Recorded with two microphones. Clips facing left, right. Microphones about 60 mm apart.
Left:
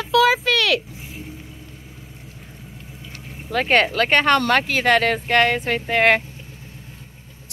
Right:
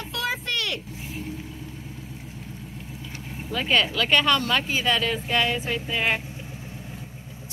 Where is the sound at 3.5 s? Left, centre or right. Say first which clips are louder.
Left 5 dB; left.